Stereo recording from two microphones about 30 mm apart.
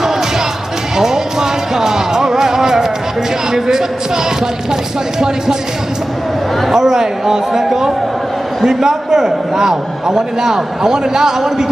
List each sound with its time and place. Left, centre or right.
0.9 s music: centre
6.7 s a man's voice: centre